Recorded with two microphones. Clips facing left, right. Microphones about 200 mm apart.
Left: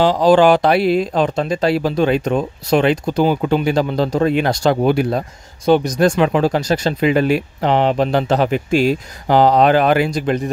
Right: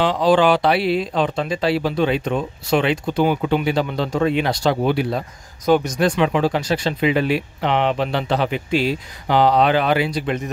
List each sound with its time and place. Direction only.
0.0 s speech: 40° left (ahead or behind)